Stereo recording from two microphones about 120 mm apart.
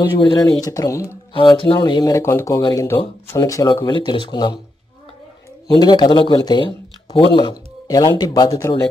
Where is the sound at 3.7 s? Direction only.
40° left (ahead or behind).